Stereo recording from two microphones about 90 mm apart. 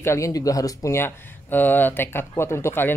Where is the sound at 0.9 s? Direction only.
25° left (ahead or behind).